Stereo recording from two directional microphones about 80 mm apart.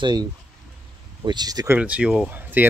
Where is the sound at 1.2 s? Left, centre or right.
Right.